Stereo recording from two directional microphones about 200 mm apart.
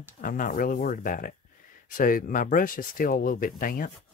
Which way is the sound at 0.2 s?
45° left (ahead or behind).